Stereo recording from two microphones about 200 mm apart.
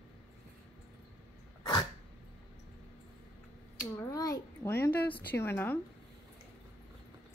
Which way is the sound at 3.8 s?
15° left (ahead or behind).